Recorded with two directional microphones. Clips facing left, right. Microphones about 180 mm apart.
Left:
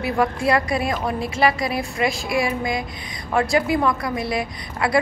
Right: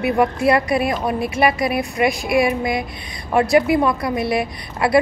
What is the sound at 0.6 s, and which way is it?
Speech, 25° left (ahead or behind).